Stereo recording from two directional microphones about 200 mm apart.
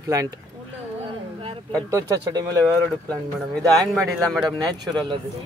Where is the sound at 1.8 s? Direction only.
15° right (ahead or behind).